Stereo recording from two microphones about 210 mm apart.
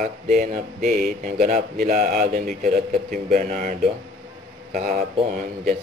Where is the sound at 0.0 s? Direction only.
40° right (ahead or behind).